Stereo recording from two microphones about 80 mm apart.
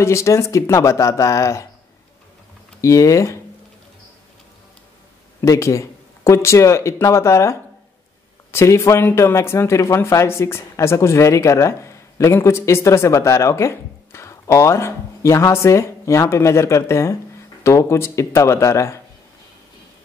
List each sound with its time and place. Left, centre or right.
0.0 s speech: left
2.8 s speech: left
5.4 s speech: left